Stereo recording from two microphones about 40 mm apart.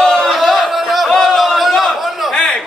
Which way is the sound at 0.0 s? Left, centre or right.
Centre.